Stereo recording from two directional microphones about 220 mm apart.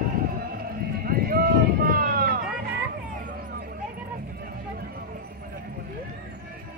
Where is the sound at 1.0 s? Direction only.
40° right (ahead or behind).